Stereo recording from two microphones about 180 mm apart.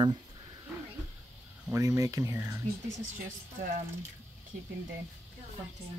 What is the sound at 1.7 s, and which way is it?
Speech, 15° right (ahead or behind).